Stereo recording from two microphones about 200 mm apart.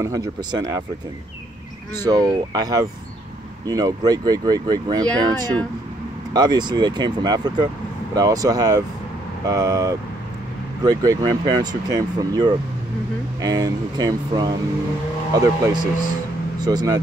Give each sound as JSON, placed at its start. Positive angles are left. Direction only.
{"t": 0.0, "sound": "speech", "side_deg": -15}
{"t": 2.0, "sound": "speech", "side_deg": -20}